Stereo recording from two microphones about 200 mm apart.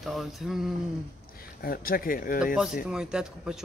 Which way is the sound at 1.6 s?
45° left (ahead or behind).